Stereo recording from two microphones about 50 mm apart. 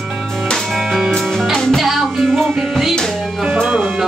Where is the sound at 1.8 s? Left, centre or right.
Centre.